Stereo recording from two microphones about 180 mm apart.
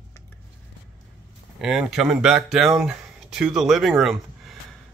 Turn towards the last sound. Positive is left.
turn(degrees=0)  # may be behind; listen again after turning